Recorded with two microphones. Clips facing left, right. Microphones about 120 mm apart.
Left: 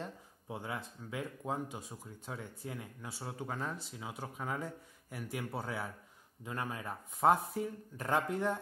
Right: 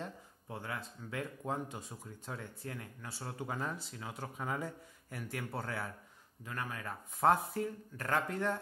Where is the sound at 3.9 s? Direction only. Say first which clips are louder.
Even; 10° left (ahead or behind).